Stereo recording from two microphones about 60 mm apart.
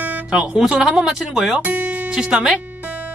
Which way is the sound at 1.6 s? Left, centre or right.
Right.